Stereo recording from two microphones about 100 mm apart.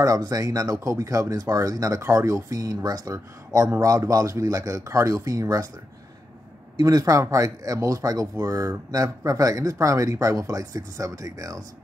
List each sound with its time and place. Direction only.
0.0 s speech: 35° right (ahead or behind)
6.8 s speech: 40° right (ahead or behind)